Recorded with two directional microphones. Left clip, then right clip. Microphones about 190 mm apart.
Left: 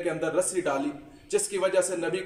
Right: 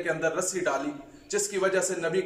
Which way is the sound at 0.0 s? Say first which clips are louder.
Left 1 dB; 15° left (ahead or behind).